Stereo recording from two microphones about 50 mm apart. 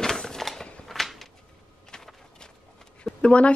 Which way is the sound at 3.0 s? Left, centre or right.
Left.